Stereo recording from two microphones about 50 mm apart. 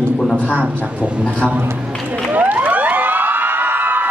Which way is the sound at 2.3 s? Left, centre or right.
Right.